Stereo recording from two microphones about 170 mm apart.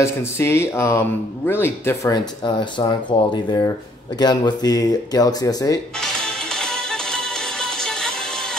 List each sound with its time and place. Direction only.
0.0 s speech: 15° left (ahead or behind)
6.5 s music: 5° left (ahead or behind)